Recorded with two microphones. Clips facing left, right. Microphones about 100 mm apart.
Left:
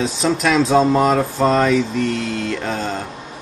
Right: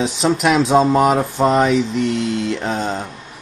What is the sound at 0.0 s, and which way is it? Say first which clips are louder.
Mantra: right 2 dB; 15° right (ahead or behind).